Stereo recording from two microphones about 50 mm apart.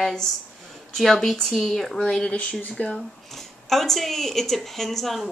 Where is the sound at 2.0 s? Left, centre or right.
Centre.